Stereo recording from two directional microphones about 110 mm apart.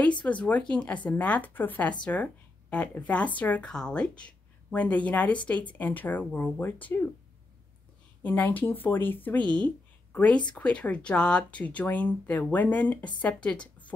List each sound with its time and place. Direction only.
0.2 s speech: 15° left (ahead or behind)
8.2 s speech: 15° left (ahead or behind)